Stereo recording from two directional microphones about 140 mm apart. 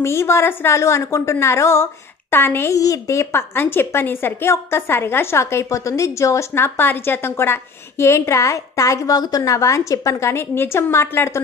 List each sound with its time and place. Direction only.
0.0 s a woman's voice: 20° left (ahead or behind)